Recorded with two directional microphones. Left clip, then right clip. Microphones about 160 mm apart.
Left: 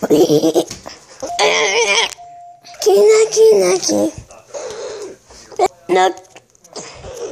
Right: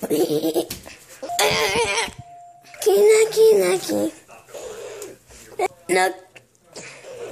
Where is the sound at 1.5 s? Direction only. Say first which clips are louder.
Left 6 dB; 15° left (ahead or behind).